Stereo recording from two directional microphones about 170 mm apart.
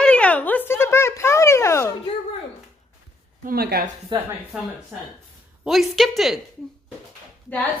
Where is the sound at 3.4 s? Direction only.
65° right (ahead or behind).